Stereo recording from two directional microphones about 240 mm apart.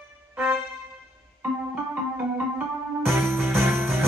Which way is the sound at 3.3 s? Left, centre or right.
Centre.